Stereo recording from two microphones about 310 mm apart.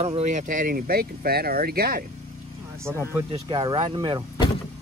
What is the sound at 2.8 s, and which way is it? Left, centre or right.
Speech, centre.